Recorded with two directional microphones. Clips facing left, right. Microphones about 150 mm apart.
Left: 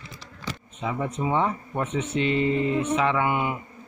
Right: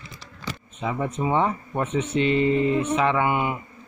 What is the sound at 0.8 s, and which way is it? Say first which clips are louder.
A man's voice: right 2 dB; 25° right (ahead or behind).